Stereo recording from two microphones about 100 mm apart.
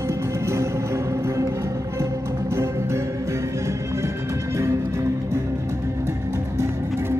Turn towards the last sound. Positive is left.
turn(degrees=-25)  # may be behind; listen again after turning